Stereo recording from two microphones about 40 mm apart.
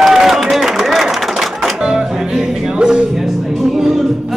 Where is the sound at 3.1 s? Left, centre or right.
Centre.